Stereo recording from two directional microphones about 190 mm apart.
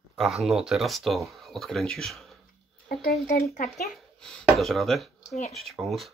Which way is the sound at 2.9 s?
55° left (ahead or behind).